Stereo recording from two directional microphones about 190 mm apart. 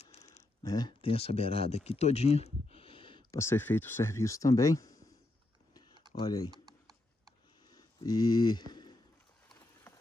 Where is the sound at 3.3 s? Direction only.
15° left (ahead or behind).